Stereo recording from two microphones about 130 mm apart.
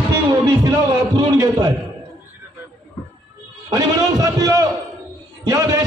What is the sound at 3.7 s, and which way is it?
A man's voice, 30° right (ahead or behind).